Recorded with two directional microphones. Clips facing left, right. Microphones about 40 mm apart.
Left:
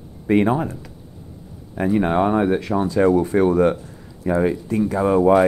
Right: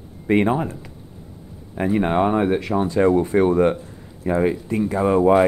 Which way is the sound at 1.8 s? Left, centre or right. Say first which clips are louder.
Left 1 dB; centre.